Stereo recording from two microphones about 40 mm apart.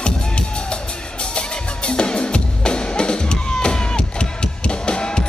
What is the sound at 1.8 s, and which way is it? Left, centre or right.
Music, left.